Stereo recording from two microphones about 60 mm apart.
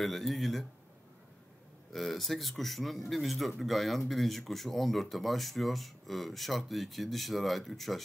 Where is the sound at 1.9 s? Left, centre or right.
Centre.